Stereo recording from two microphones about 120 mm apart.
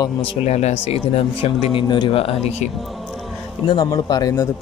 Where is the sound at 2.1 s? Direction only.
55° left (ahead or behind).